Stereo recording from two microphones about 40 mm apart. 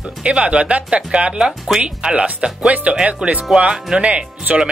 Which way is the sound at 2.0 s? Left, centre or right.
Right.